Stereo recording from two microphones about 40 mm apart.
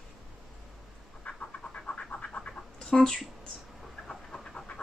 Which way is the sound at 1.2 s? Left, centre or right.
Left.